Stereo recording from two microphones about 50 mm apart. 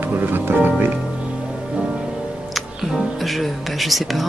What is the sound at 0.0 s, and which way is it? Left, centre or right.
Music, right.